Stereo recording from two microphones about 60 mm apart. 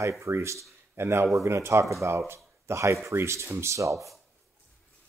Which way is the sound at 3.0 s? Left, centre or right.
Right.